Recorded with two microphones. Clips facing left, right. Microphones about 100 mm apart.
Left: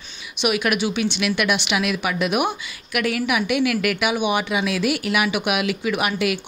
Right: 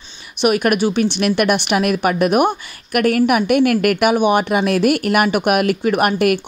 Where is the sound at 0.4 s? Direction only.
45° right (ahead or behind).